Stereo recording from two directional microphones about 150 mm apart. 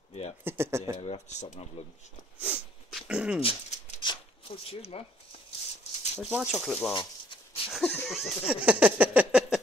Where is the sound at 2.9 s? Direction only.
5° right (ahead or behind).